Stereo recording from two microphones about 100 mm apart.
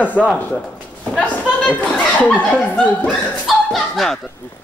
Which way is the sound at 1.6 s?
15° left (ahead or behind).